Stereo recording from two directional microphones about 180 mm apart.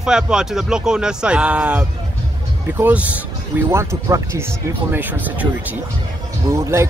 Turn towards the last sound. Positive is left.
turn(degrees=-15)  # may be behind; listen again after turning